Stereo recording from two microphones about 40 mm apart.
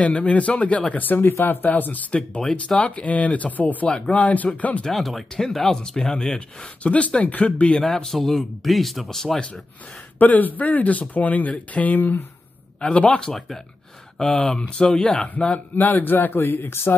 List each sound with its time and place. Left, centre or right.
0.0 s speech: left
0.9 s speech: left
4.9 s a man's voice: centre; by 7.8 s left
7.8 s a man's voice: centre
10.1 s speech: left
12.8 s speech: left
13.2 s speech: centre; by 15.6 s left
15.7 s speech: left